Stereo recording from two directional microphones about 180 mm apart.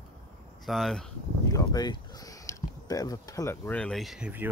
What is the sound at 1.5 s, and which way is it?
Speech, 20° left (ahead or behind).